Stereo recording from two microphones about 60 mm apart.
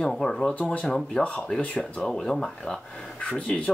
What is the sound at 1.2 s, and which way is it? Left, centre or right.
Speech, left.